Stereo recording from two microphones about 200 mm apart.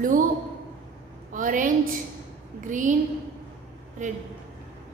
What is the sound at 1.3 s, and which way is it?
A woman's voice, 40° right (ahead or behind).